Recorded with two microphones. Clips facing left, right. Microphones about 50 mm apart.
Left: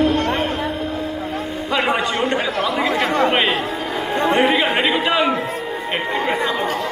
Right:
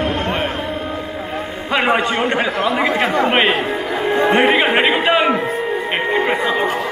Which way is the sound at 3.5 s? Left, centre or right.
Right.